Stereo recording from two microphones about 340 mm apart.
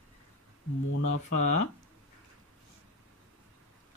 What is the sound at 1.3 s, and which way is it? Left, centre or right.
Speech, left.